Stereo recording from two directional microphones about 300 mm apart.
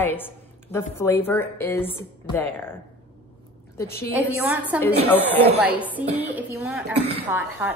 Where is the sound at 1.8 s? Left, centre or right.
Centre.